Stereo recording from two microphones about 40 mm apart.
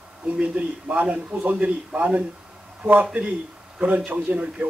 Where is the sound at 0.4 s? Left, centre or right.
Right.